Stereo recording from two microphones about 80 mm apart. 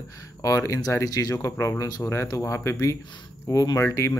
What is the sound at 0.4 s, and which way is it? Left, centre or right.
Speech, left.